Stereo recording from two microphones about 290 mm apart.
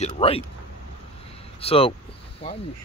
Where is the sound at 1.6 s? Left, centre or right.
Centre.